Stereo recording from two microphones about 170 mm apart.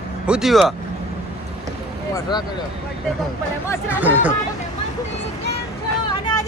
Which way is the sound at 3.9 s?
10° right (ahead or behind).